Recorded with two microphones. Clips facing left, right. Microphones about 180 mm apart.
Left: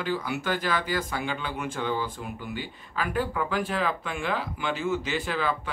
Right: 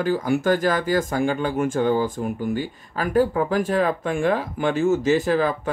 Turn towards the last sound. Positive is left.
turn(degrees=-45)  # may be behind; listen again after turning